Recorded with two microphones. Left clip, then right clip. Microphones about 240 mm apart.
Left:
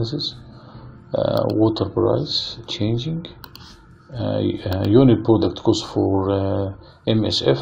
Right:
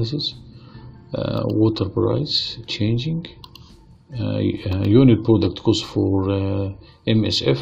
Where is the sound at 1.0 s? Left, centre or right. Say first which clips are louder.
Left 5 dB; right.